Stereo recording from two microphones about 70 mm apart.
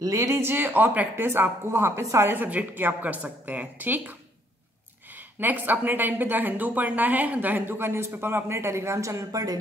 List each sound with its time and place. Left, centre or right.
0.0 s speech: right
2.2 s a woman's voice: right
5.4 s a woman's voice: right